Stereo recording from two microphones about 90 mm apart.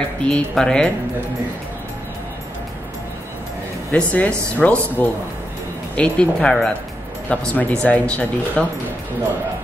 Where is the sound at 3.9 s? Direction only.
15° left (ahead or behind).